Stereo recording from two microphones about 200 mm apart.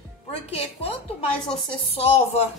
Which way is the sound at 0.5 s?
30° left (ahead or behind).